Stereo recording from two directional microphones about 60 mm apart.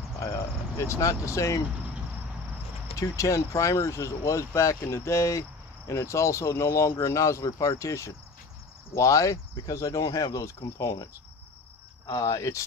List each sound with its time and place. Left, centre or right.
0.2 s speech: left
3.0 s speech: left
10.4 s speech: left
12.3 s speech: left